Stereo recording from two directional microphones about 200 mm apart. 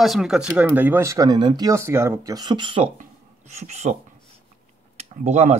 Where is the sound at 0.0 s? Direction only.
Centre (ahead or behind); by 2.9 s 25° right (ahead or behind).